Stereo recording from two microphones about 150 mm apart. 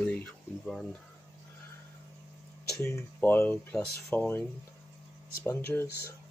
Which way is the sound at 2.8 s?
15° left (ahead or behind).